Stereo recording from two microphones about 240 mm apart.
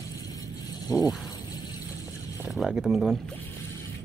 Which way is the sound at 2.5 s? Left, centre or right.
Centre.